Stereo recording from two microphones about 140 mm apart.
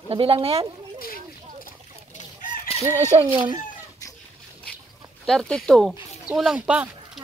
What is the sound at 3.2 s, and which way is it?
Speech, 35° right (ahead or behind).